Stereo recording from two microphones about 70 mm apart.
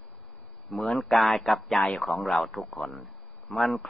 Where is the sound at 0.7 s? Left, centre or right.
Centre.